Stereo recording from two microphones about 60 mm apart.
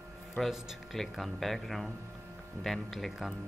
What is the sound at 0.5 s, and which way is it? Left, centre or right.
Speech, centre.